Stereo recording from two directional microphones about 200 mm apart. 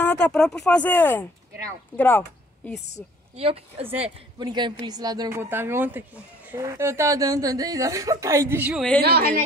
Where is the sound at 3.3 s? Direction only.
30° right (ahead or behind); by 8.9 s 5° right (ahead or behind).